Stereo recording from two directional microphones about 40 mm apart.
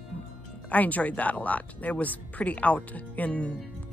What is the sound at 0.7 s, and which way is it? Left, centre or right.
Speech, left.